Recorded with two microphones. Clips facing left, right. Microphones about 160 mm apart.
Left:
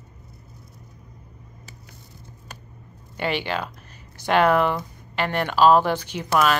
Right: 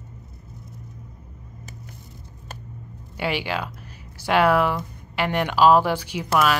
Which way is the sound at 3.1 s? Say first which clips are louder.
Even; 10° right (ahead or behind).